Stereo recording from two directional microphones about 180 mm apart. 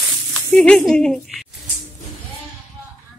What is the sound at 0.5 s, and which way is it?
Speech, 5° left (ahead or behind).